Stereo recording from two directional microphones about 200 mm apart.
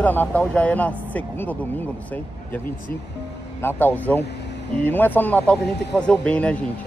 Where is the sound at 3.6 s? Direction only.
10° left (ahead or behind).